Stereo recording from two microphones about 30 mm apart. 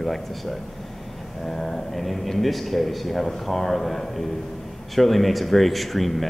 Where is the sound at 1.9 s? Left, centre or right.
Centre.